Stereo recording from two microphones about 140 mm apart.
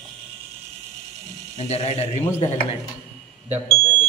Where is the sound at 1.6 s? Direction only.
50° left (ahead or behind).